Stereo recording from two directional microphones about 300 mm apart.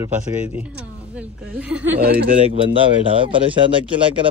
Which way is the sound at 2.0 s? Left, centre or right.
Right.